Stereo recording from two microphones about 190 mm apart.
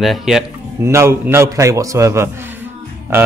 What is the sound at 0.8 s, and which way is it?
Speech, 15° right (ahead or behind).